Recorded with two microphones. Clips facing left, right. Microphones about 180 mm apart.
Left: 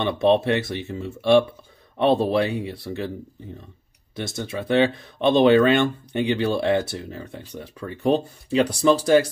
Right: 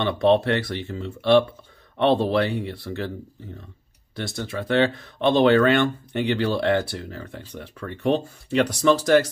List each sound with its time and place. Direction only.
0.0 s speech: 20° left (ahead or behind)
4.1 s speech: 15° left (ahead or behind)